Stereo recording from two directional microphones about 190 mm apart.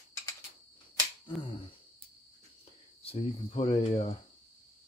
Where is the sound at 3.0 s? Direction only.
30° left (ahead or behind).